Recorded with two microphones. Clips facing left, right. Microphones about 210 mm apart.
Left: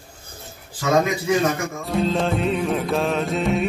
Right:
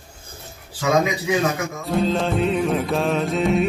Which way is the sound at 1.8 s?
Centre (ahead or behind).